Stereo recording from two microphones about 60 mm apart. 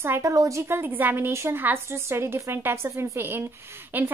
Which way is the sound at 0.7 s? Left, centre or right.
Right.